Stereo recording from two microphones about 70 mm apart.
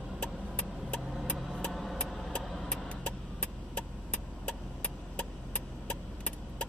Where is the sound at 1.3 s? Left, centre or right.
Centre.